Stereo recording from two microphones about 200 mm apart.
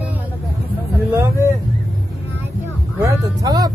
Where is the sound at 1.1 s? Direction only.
15° right (ahead or behind).